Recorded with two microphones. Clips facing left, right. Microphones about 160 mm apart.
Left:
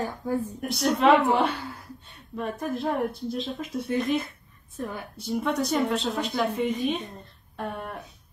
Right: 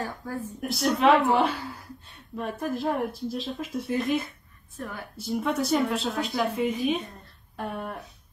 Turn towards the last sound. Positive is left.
turn(degrees=0)  # may be behind; listen again after turning